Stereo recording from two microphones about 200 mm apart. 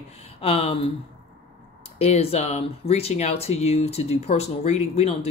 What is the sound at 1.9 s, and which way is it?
Speech, 30° left (ahead or behind).